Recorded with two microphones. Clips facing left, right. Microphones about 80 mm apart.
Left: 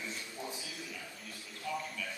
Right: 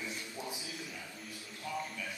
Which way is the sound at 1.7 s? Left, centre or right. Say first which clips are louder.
Left 1 dB; right.